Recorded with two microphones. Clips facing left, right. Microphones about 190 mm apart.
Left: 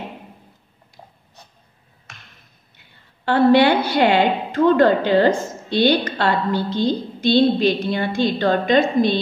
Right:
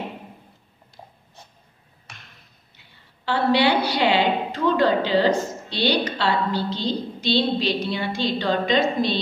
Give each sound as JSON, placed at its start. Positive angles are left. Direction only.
{"t": 3.3, "sound": "a woman's voice", "side_deg": 50}